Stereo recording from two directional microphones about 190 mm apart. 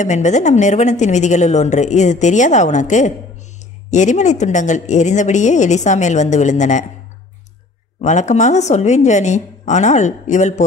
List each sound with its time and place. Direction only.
0.0 s a woman's voice: 40° left (ahead or behind)
8.0 s a woman's voice: 40° left (ahead or behind)